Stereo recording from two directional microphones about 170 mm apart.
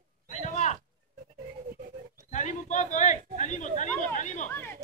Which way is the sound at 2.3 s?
45° left (ahead or behind).